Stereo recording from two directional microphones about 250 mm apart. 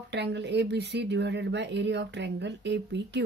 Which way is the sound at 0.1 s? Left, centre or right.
Right.